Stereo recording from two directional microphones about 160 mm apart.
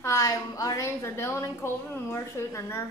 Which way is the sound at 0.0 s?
20° left (ahead or behind).